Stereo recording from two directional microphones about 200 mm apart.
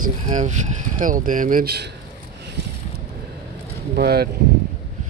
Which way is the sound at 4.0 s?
50° right (ahead or behind).